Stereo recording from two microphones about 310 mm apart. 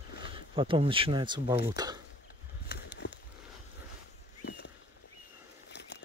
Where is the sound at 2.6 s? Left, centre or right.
Left.